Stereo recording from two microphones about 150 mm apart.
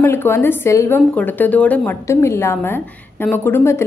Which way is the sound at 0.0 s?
15° left (ahead or behind).